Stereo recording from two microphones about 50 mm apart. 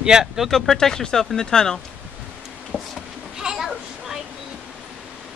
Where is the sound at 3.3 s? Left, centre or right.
Centre.